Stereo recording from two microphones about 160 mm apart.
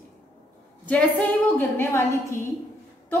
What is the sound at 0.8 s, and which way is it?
A woman's voice, 10° left (ahead or behind).